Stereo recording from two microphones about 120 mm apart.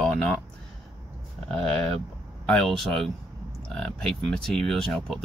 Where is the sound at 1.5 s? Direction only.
5° left (ahead or behind).